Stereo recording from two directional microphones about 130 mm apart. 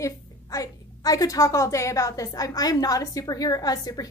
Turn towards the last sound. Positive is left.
turn(degrees=30)  # may be behind; listen again after turning